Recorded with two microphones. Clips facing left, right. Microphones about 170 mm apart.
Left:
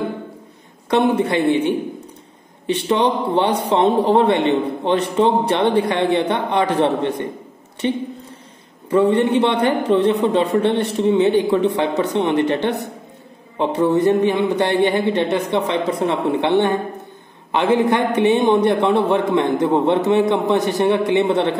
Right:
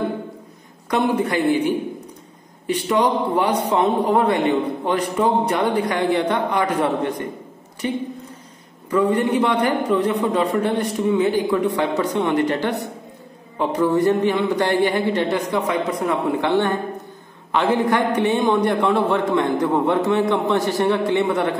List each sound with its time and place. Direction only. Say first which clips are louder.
0.8 s speech: left 3 dB; 25° left (ahead or behind)